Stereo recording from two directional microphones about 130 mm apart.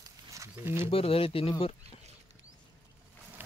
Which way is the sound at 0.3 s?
20° right (ahead or behind).